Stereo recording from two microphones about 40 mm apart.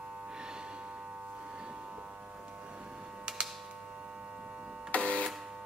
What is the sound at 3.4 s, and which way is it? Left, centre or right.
Typewriter, right.